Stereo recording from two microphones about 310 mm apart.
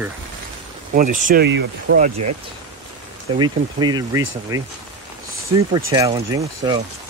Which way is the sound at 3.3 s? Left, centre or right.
Centre.